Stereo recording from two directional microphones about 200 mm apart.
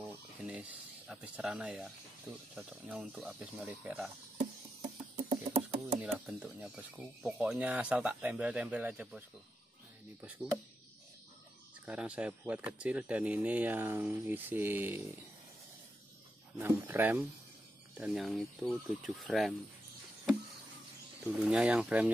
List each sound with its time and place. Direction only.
0.0 s a sound: 5° right (ahead or behind)
2.5 s speech: 5° right (ahead or behind)
5.1 s a sound: 30° right (ahead or behind)
6.1 s speech: 5° right (ahead or behind)
11.8 s speech: 5° right (ahead or behind)
16.5 s speech: 10° right (ahead or behind)
21.4 s speech: 5° right (ahead or behind)